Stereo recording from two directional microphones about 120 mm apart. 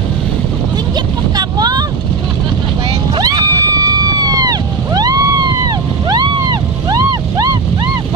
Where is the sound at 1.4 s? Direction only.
35° right (ahead or behind).